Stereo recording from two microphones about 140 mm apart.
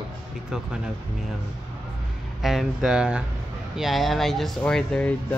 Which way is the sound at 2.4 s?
Centre (ahead or behind).